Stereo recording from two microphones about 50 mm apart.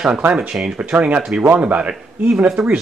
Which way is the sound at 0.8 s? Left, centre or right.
Right.